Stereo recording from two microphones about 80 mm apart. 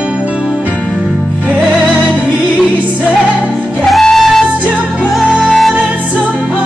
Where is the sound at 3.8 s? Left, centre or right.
Centre.